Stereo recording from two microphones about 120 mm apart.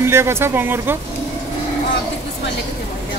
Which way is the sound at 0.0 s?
20° right (ahead or behind).